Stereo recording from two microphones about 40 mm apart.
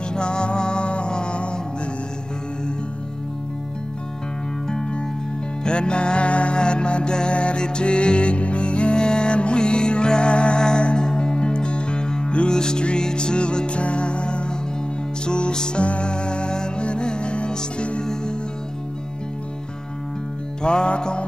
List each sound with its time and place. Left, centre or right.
0.1 s music: left
4.6 s music: centre
20.6 s music: left